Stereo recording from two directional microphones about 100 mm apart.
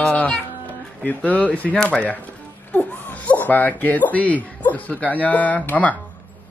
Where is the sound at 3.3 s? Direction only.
15° left (ahead or behind).